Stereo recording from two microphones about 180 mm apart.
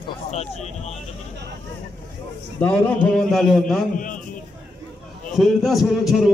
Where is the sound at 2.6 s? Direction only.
10° left (ahead or behind).